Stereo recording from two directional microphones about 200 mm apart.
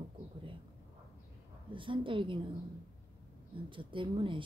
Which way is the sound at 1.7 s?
25° right (ahead or behind).